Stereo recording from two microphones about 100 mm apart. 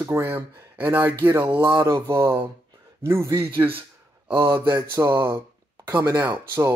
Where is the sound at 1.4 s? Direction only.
55° right (ahead or behind).